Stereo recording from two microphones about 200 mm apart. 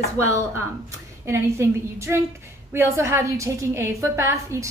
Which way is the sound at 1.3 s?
15° right (ahead or behind).